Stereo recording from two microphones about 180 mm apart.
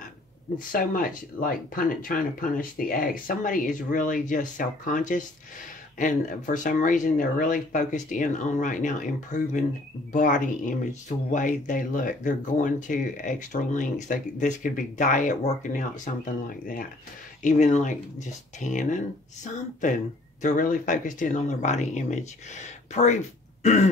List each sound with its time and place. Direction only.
0.7 s speech: 55° left (ahead or behind)